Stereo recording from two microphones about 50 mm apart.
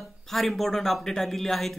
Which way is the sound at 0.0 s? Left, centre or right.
Centre.